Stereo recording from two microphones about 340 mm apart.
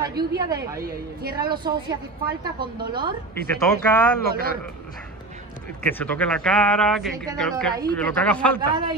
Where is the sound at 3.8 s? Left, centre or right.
Centre.